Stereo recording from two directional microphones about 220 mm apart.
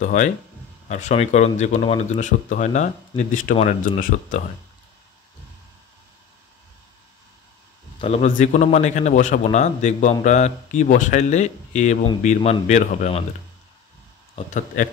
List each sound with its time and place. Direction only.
0.0 s a man's voice: 35° left (ahead or behind)
8.0 s a man's voice: 30° left (ahead or behind)
14.3 s a man's voice: 35° left (ahead or behind)